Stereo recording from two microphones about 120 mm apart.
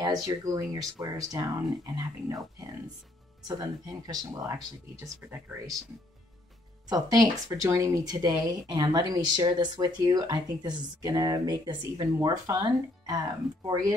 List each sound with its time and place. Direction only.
0.0 s speech: 35° right (ahead or behind)
6.9 s speech: 30° right (ahead or behind)